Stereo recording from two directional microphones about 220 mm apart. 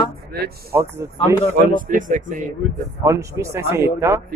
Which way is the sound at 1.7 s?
35° right (ahead or behind).